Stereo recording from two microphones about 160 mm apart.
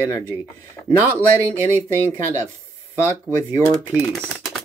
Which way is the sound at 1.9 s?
15° right (ahead or behind).